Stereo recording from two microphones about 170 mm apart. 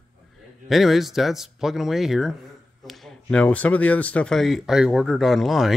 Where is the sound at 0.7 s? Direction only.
Centre (ahead or behind).